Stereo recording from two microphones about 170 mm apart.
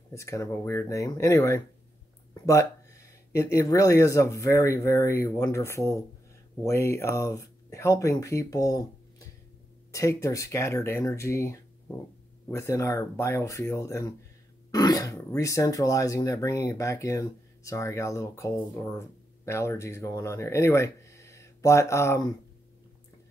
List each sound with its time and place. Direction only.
0.1 s speech: 15° left (ahead or behind)
9.9 s speech: 15° left (ahead or behind)
14.7 s throat clearing: 20° left (ahead or behind)
15.3 s speech: 20° left (ahead or behind)